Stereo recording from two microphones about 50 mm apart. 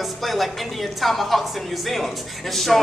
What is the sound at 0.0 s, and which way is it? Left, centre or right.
A woman's voice, centre.